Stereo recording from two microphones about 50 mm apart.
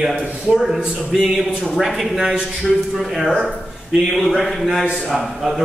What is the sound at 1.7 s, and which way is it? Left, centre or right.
A man's voice, centre.